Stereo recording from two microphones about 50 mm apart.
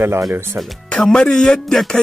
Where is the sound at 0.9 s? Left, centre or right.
Centre.